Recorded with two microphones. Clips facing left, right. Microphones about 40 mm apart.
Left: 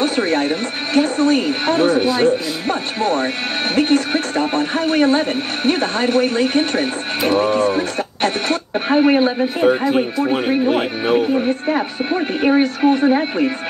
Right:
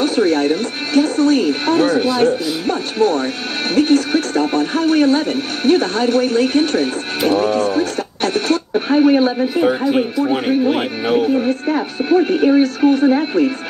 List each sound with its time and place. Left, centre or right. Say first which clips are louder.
0.0 s speech: right 2 dB; left
9.6 s speech: even; centre
11.7 s speech: right 4 dB; left
12.3 s speech: right 2 dB; left